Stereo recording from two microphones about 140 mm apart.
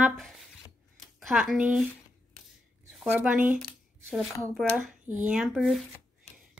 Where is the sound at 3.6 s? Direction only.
5° left (ahead or behind).